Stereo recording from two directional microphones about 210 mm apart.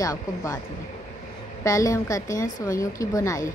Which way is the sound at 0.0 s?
15° left (ahead or behind).